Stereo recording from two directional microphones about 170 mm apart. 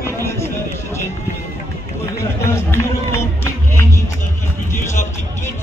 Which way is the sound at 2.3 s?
15° left (ahead or behind).